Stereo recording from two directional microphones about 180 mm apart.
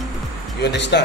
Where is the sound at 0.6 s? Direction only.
70° left (ahead or behind).